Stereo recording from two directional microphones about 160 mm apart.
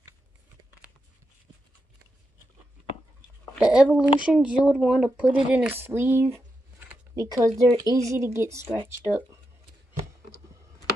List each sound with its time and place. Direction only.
3.5 s speech: 5° right (ahead or behind)